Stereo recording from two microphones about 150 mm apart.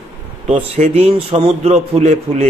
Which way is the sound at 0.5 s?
45° right (ahead or behind).